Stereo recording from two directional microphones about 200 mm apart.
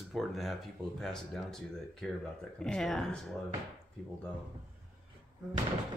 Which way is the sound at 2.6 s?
Centre (ahead or behind).